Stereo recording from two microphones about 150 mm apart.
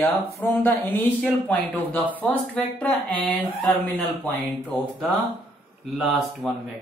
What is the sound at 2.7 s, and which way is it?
Speech, 10° left (ahead or behind).